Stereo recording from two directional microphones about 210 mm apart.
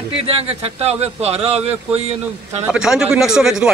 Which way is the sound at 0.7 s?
30° right (ahead or behind).